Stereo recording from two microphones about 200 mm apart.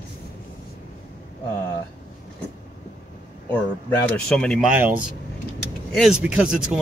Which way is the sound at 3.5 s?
10° left (ahead or behind).